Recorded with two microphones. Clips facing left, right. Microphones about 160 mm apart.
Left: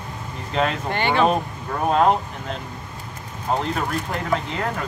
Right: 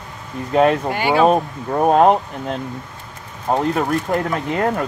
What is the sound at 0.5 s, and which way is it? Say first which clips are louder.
Speech: right 8 dB; 50° right (ahead or behind).